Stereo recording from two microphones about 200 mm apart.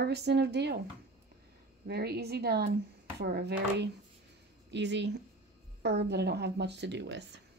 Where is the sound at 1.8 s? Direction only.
55° right (ahead or behind).